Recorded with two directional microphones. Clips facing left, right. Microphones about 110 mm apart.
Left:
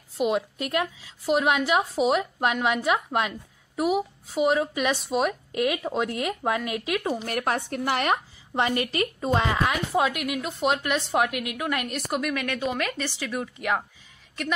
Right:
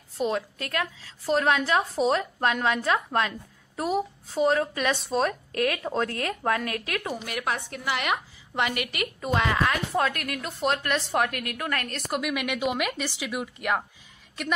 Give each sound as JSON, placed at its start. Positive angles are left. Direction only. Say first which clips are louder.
{"t": 0.2, "sound": "a woman's voice", "louder": "left 3 dB", "side_deg": 20}
{"t": 7.2, "sound": "a woman's voice", "louder": "left 3 dB", "side_deg": 45}
{"t": 9.7, "sound": "a woman's voice", "louder": "left 1 dB", "side_deg": 10}
{"t": 12.1, "sound": "speech", "louder": "even", "side_deg": -5}